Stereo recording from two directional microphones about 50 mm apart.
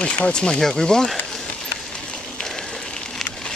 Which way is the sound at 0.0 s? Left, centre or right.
Left.